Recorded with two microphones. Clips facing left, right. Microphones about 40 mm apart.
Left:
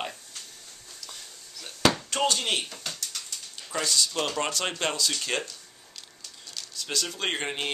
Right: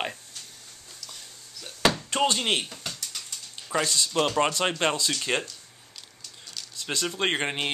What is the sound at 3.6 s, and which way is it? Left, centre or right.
Speech, right.